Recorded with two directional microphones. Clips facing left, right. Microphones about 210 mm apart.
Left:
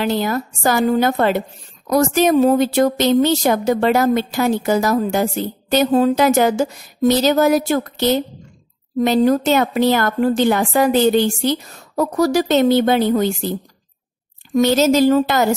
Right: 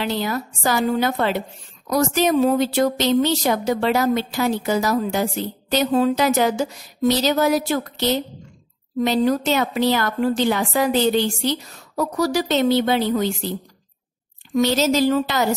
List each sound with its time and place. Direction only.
0.0 s a woman's voice: 50° left (ahead or behind)